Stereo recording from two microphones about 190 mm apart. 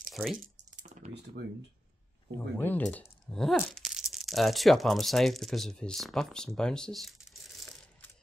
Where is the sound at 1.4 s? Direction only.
60° right (ahead or behind).